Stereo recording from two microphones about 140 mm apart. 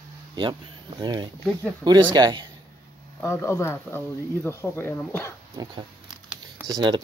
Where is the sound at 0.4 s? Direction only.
35° right (ahead or behind).